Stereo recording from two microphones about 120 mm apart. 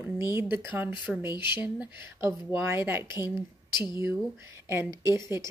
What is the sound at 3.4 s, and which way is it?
Speech, 40° left (ahead or behind).